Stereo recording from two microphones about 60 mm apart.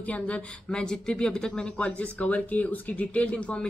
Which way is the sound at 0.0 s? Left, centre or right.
Left.